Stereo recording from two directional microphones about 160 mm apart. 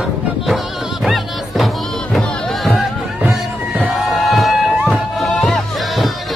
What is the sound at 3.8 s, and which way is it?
Music, centre (ahead or behind).